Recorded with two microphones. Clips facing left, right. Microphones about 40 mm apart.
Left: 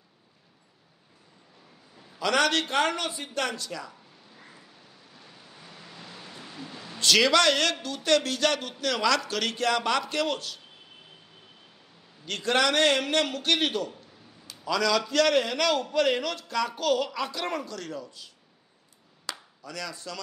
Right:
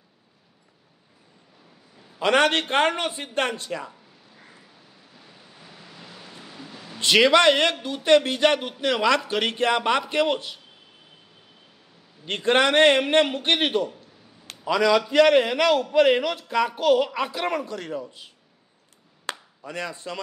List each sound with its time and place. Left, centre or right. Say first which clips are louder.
2.1 s speech: right 4 dB; right
4.3 s vehicle: even; centre
5.1 s a sound: right 1 dB; centre
7.0 s speech: right 4 dB; right
12.3 s speech: right 5 dB; right
19.3 s chop: right 5 dB; right
19.6 s speech: right 5 dB; right